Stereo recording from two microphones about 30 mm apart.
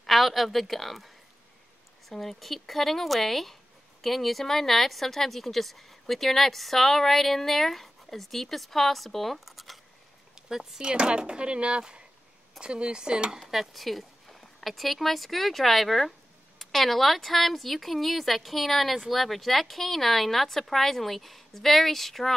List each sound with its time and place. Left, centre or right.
0.0 s a woman's voice: centre
10.3 s a sound: centre
10.8 s speech: right
13.5 s a woman's voice: centre